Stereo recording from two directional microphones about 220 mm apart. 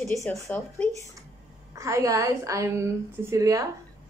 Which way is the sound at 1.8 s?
15° right (ahead or behind).